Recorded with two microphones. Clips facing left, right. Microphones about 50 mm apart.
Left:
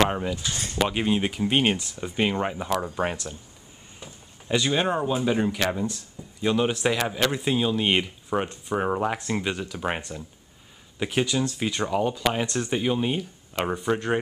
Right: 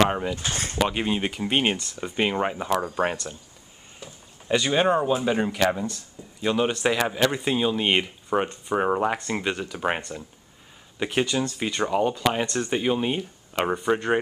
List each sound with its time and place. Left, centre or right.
0.0 s speech: centre
0.4 s speech: right
0.7 s speech: centre
4.5 s speech: centre